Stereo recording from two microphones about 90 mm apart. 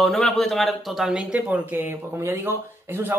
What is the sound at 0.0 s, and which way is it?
Speech, 5° left (ahead or behind).